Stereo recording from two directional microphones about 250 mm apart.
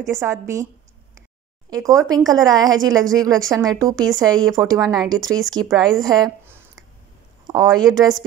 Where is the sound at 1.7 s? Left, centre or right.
Centre.